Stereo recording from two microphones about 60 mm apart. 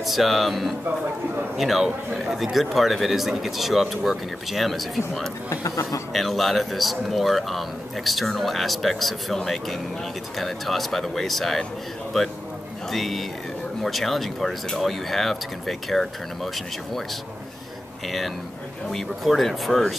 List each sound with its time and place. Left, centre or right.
0.0 s speech: centre
5.5 s speech: left
6.1 s speech: centre
12.9 s speech: centre
18.0 s speech: centre